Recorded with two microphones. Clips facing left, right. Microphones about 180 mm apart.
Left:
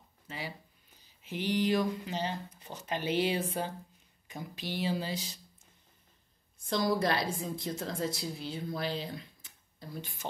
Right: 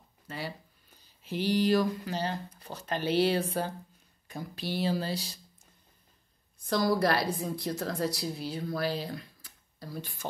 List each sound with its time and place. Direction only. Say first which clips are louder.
1.2 s speech: right 3 dB; 15° left (ahead or behind)
6.7 s a woman's voice: right 3 dB; 20° left (ahead or behind)